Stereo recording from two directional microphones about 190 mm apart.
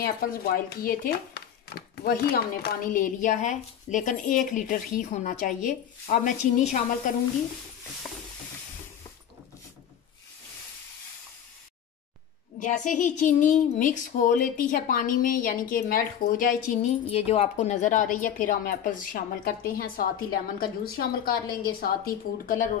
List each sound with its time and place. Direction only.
0.0 s a woman's voice: 50° left (ahead or behind)
12.5 s speech: 40° left (ahead or behind)